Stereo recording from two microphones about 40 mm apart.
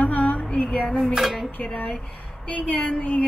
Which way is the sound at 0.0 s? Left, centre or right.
Left.